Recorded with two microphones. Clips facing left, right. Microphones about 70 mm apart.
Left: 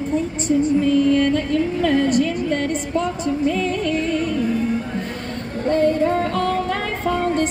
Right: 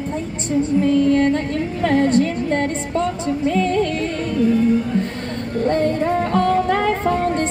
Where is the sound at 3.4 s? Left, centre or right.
Right.